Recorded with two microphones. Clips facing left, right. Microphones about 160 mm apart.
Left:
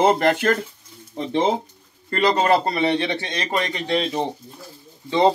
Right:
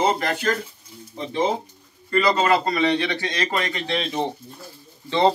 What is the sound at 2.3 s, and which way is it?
A man's voice, 35° left (ahead or behind).